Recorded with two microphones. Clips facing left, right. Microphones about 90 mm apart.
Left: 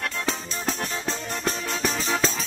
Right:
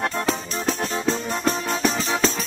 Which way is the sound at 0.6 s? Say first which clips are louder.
Right 5 dB; 25° right (ahead or behind).